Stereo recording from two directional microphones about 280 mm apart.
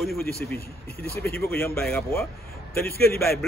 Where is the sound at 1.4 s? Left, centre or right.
Centre.